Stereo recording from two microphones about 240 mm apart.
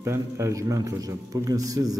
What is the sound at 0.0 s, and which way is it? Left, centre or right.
A man's voice, centre.